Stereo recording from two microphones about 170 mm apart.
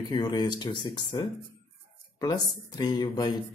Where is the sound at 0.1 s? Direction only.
25° left (ahead or behind).